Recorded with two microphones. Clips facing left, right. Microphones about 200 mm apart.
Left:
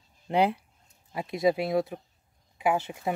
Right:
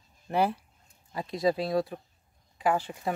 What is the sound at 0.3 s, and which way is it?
Speech, 20° left (ahead or behind).